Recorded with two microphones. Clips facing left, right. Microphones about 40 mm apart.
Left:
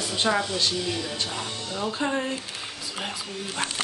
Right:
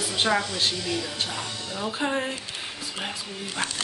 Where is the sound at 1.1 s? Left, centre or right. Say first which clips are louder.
Even; right.